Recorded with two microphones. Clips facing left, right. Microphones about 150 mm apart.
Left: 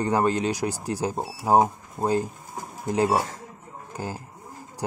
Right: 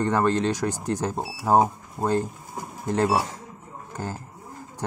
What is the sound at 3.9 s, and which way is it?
Speech, 10° left (ahead or behind).